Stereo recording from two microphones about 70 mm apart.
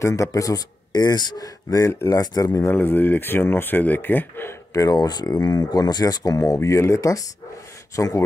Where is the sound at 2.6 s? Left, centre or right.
Left.